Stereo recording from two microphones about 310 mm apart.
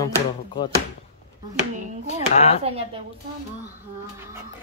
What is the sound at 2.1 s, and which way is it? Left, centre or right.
Speech, centre.